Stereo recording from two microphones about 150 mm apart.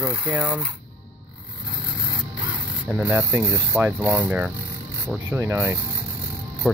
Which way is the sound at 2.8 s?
10° right (ahead or behind).